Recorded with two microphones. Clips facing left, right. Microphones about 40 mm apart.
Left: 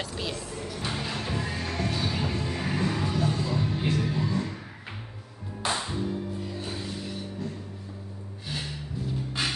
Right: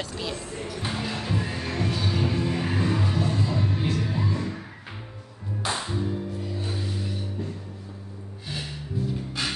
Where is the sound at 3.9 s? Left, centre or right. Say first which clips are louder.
Left 3 dB; centre.